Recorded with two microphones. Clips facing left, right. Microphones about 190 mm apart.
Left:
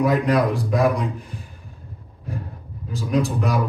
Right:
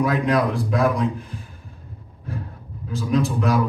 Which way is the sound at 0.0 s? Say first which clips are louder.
Left 1 dB; centre (ahead or behind).